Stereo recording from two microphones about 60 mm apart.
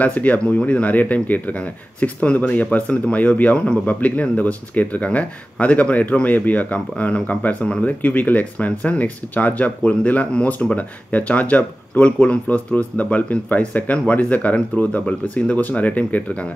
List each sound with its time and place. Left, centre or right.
0.0 s speech: left